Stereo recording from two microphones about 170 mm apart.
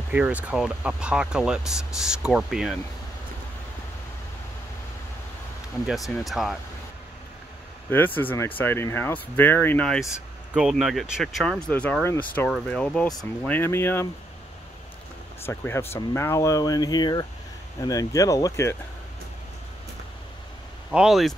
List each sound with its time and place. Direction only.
0.1 s speech: 10° right (ahead or behind)
5.9 s speech: centre (ahead or behind)
7.9 s speech: 10° left (ahead or behind)
15.4 s speech: 15° left (ahead or behind)
20.9 s speech: 5° right (ahead or behind)